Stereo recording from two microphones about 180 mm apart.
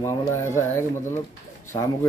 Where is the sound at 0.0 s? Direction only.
15° left (ahead or behind).